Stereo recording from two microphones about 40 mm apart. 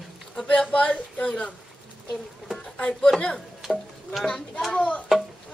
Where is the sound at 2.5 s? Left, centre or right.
Left.